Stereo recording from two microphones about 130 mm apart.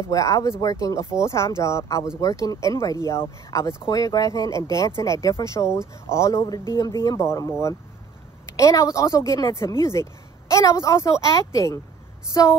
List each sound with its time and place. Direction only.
0.1 s speech: 25° left (ahead or behind)
8.5 s speech: 25° left (ahead or behind)